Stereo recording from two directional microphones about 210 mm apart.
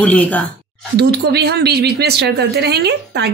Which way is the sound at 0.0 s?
5° left (ahead or behind).